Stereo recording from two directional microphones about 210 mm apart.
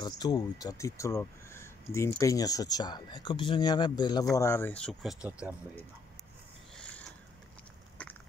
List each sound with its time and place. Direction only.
0.0 s speech: 20° left (ahead or behind); by 5.6 s 5° right (ahead or behind)
6.8 s sniff: 5° left (ahead or behind)